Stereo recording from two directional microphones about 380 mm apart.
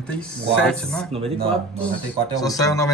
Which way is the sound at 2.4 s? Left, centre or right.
Centre.